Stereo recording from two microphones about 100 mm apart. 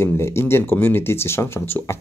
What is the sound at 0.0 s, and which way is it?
Speech, 25° left (ahead or behind).